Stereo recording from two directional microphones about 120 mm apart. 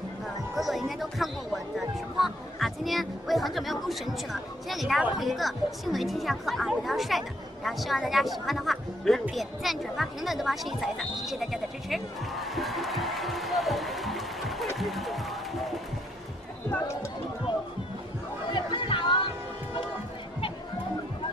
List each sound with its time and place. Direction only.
0.6 s music: centre (ahead or behind)
2.1 s a woman's voice: centre (ahead or behind)
18.5 s chatter: 40° left (ahead or behind)